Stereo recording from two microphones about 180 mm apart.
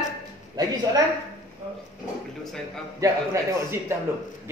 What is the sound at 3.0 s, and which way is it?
Speech, 15° right (ahead or behind).